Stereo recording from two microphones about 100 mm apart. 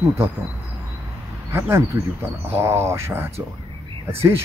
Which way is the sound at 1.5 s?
25° right (ahead or behind).